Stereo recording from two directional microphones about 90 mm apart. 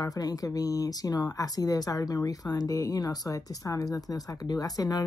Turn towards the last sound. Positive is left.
turn(degrees=45)  # may be behind; listen again after turning